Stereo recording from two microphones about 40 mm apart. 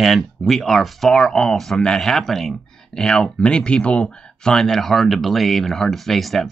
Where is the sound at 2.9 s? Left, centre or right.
Centre.